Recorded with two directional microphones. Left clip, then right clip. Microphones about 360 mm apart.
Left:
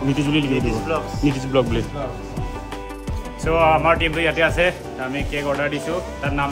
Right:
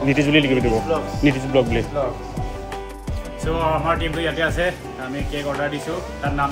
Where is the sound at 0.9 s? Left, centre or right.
Left.